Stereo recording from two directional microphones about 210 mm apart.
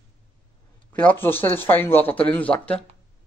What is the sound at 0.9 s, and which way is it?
Speech, 10° left (ahead or behind).